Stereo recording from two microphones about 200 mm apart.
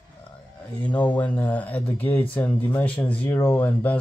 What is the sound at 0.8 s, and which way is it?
Speech, 10° left (ahead or behind).